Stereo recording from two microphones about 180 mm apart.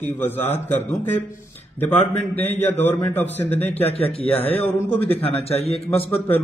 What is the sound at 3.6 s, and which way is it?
Speech, 35° left (ahead or behind).